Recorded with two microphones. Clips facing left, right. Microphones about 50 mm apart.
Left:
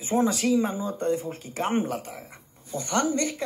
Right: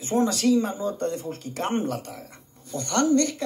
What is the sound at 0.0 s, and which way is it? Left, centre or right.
Speech, centre.